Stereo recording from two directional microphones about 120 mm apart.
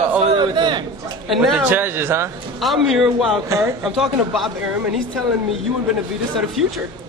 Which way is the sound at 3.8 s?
Centre (ahead or behind).